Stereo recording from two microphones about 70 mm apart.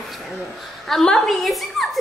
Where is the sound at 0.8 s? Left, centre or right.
Centre.